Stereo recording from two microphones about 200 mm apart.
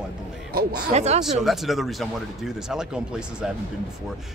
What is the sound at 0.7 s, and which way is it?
Speech, 30° right (ahead or behind).